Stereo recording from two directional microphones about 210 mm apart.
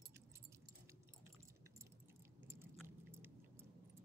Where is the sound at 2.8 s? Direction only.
10° right (ahead or behind).